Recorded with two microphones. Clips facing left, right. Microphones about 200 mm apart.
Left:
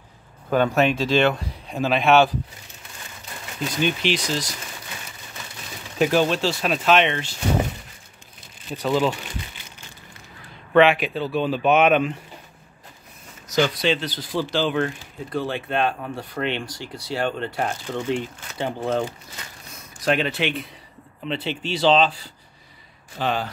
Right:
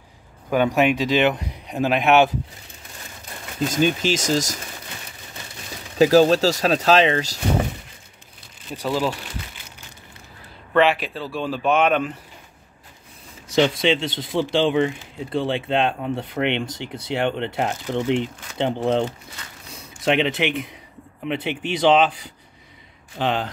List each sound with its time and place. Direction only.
0.5 s speech: 15° right (ahead or behind)
3.6 s speech: 45° right (ahead or behind)
5.9 s speech: 35° right (ahead or behind)
8.7 s speech: 5° right (ahead or behind)
10.7 s a sound: centre (ahead or behind)
11.1 s speech: centre (ahead or behind)
13.5 s speech: 25° right (ahead or behind)